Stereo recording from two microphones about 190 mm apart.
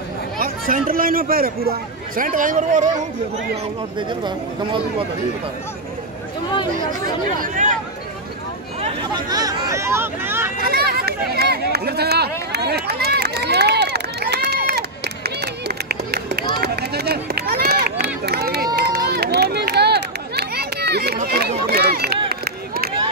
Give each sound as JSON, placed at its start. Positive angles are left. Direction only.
{"t": 0.4, "sound": "speech", "side_deg": -45}
{"t": 7.3, "sound": "speech", "side_deg": -45}
{"t": 9.1, "sound": "speech", "side_deg": -20}
{"t": 10.6, "sound": "run", "side_deg": -55}